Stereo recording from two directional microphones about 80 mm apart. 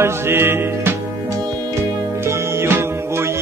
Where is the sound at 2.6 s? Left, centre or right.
Right.